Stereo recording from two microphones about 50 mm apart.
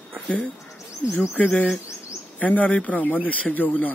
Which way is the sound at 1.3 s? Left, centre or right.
Left.